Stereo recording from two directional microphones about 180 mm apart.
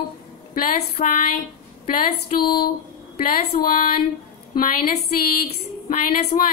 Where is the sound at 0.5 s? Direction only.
50° left (ahead or behind).